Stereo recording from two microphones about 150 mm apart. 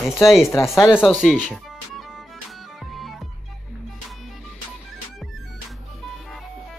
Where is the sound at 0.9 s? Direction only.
Centre (ahead or behind).